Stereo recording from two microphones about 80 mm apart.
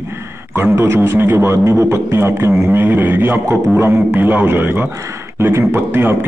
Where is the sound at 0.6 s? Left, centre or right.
Right.